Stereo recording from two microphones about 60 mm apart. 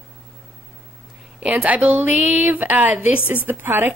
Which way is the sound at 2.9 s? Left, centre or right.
Centre.